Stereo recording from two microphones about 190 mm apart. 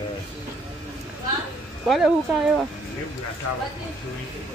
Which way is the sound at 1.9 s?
Centre (ahead or behind).